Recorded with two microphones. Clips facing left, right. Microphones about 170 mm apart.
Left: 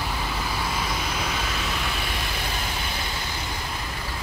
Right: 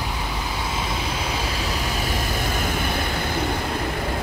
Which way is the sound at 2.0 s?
45° right (ahead or behind).